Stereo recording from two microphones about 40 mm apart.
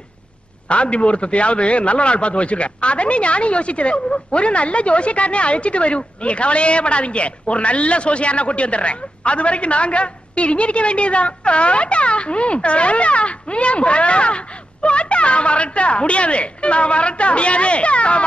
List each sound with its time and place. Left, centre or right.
0.7 s a man's voice: left